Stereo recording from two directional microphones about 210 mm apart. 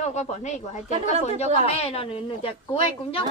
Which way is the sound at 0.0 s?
35° left (ahead or behind).